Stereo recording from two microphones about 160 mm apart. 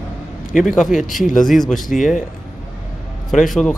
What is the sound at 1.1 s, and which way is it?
Speech, centre (ahead or behind).